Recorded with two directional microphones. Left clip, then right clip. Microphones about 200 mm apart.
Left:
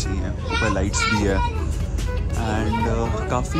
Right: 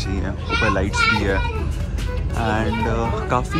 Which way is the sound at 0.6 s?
5° left (ahead or behind).